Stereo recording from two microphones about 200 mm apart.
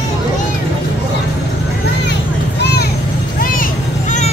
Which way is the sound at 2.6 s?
55° left (ahead or behind).